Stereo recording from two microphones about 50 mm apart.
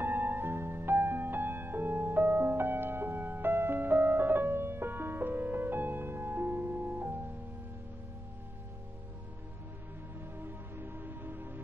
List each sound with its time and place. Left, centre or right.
0.0 s music: right
6.7 s music: right
10.4 s music: right